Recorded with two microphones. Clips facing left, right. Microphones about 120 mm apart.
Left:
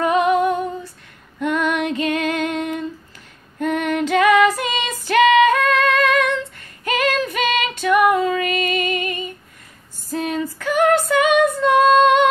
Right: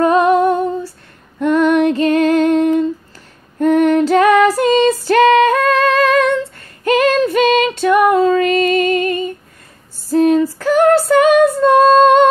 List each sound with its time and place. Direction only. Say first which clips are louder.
0.0 s female singing: right 5 dB; 35° right (ahead or behind)